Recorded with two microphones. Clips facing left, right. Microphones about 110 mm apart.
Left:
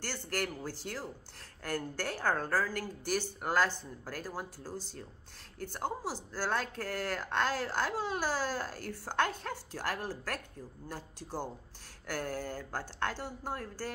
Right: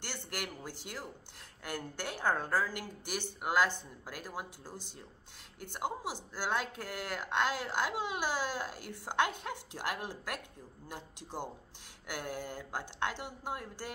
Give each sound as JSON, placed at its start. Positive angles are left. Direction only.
{"t": 0.0, "sound": "speech", "side_deg": -15}